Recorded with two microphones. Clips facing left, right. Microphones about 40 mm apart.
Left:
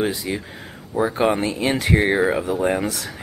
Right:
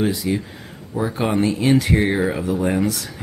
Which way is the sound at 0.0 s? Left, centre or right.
Centre.